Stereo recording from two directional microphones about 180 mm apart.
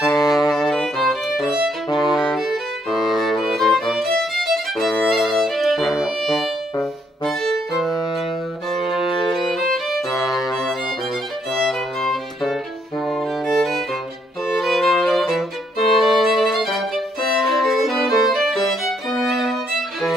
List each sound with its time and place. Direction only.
0.2 s music: 20° left (ahead or behind)
0.5 s music: centre (ahead or behind)
1.9 s violin: 25° left (ahead or behind)
2.1 s violin: centre (ahead or behind)
3.1 s music: centre (ahead or behind)
8.8 s music: 30° left (ahead or behind)
9.3 s music: centre (ahead or behind)
14.6 s violin: centre (ahead or behind)